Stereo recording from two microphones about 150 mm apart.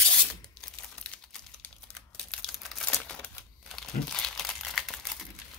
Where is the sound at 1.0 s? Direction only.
10° left (ahead or behind).